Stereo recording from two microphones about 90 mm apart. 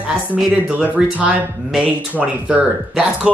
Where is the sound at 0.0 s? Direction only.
10° right (ahead or behind).